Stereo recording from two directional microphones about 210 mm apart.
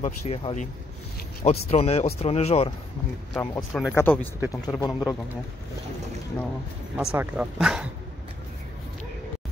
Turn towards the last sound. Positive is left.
turn(degrees=-5)  # may be behind; listen again after turning